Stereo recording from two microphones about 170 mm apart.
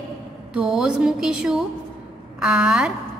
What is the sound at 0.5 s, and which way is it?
A woman's voice, 5° right (ahead or behind).